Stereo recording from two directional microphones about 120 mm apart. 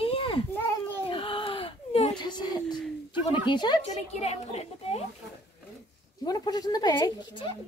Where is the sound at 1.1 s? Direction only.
45° left (ahead or behind).